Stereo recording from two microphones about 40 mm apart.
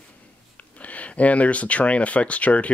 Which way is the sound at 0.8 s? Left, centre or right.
Left.